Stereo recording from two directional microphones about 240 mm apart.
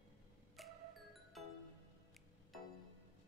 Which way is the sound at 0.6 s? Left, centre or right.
Centre.